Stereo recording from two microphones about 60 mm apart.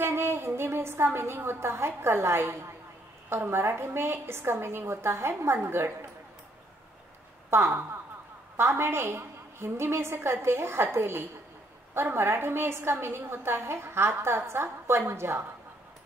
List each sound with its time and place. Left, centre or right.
0.0 s a woman's voice: right
7.5 s a woman's voice: right